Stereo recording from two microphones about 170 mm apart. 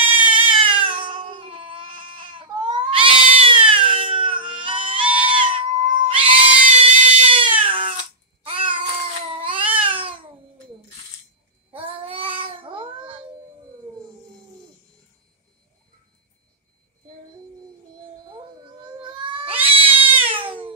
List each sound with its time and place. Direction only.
0.4 s cat: 30° right (ahead or behind)
8.5 s babbling: 30° right (ahead or behind)
9.3 s cat: 30° right (ahead or behind)
11.7 s child singing: 35° right (ahead or behind)
18.9 s cat: 30° right (ahead or behind)